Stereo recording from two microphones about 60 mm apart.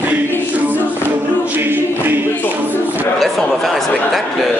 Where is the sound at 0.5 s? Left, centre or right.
Right.